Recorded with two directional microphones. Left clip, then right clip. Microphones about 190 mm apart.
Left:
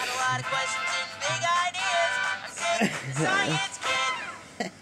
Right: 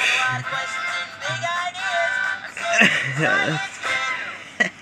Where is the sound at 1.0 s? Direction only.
30° left (ahead or behind).